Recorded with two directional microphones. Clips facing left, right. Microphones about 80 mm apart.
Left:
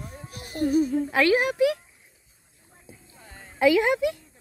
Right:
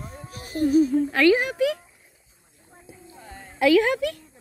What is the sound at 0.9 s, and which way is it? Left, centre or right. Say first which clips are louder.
Speech: right 3 dB; centre.